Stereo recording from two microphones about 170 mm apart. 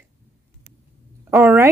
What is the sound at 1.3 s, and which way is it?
Speech, 15° right (ahead or behind).